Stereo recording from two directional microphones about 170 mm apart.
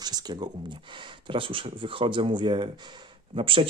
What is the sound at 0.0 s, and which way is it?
Speech, 25° right (ahead or behind).